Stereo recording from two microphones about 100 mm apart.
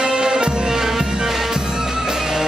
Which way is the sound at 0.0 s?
10° right (ahead or behind).